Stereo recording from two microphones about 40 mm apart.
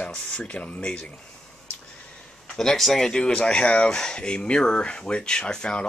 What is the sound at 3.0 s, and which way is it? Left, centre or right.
Speech, centre.